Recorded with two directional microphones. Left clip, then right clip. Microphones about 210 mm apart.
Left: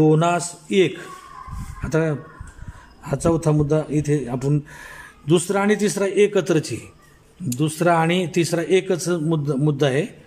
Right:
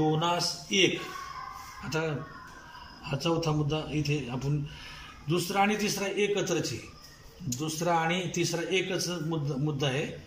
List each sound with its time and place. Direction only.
0.1 s a man's voice: 45° left (ahead or behind)
1.9 s a man's voice: 35° left (ahead or behind)
5.3 s a man's voice: 45° left (ahead or behind)